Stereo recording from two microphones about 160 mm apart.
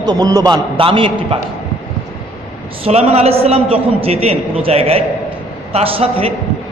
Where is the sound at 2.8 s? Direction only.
40° right (ahead or behind).